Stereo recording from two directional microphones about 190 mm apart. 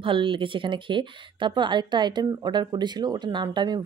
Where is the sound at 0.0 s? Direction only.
25° right (ahead or behind).